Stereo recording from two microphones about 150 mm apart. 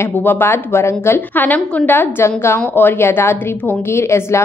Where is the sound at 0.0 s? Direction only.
15° left (ahead or behind).